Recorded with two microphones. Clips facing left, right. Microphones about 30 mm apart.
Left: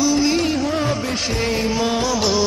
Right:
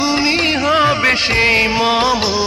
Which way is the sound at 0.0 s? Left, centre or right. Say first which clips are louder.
Right 2 dB; right.